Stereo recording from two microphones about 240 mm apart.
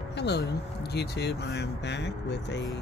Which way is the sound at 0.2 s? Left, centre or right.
Left.